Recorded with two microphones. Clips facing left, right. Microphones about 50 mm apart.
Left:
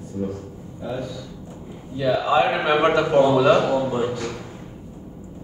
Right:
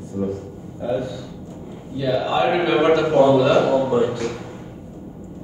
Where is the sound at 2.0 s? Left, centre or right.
Left.